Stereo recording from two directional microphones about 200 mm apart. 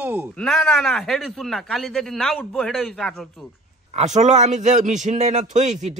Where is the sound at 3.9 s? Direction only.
35° right (ahead or behind).